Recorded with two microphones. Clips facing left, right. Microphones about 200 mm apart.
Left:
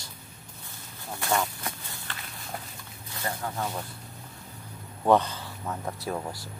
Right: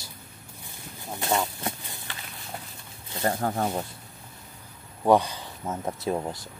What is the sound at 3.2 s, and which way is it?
Speech, 45° right (ahead or behind).